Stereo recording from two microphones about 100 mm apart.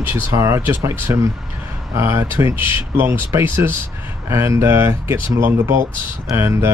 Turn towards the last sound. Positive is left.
turn(degrees=-25)  # may be behind; listen again after turning